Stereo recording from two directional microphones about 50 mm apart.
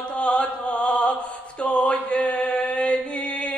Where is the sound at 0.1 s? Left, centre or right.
Left.